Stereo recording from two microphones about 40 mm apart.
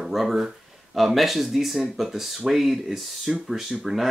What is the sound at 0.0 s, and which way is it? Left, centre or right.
Speech, centre.